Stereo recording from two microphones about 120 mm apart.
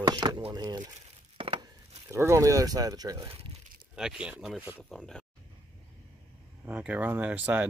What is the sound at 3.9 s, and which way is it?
Speech, 5° right (ahead or behind).